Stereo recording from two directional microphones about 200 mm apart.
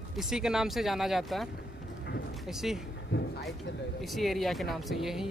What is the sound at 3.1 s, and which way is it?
Speech, 55° left (ahead or behind).